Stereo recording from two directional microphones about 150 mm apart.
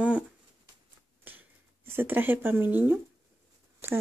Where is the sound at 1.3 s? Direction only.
10° right (ahead or behind).